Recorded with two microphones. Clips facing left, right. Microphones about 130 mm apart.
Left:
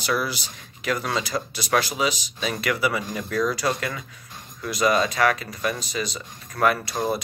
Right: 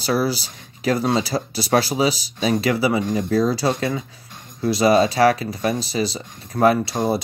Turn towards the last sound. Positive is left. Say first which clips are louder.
# right 5 dB
turn(degrees=-30)  # may be behind; listen again after turning